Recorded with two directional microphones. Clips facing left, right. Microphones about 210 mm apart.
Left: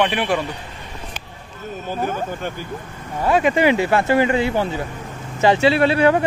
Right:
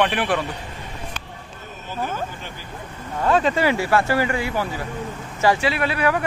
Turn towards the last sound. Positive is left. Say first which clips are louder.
# left 6 dB
turn(degrees=25)  # may be behind; listen again after turning